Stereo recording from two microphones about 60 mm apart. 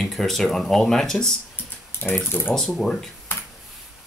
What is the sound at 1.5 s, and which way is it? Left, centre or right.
Typing, left.